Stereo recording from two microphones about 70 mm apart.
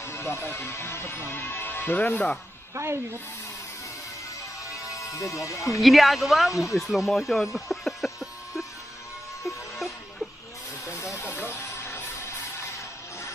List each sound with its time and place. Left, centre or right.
0.0 s speech: left
2.7 s a woman's voice: right
4.8 s speech: left
5.7 s speech: centre
10.9 s music: left